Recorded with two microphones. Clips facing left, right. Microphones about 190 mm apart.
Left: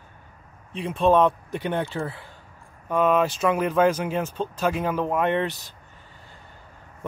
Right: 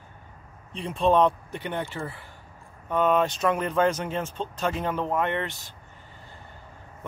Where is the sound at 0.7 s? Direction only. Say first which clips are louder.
Left 3 dB; 5° left (ahead or behind).